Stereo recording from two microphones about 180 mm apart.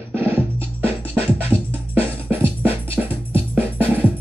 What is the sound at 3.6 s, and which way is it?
Music, 10° right (ahead or behind).